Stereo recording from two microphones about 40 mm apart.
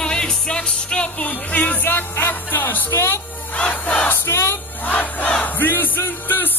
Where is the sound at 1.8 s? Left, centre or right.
Left.